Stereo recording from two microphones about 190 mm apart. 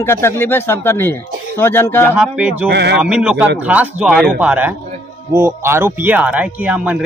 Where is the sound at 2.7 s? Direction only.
60° right (ahead or behind).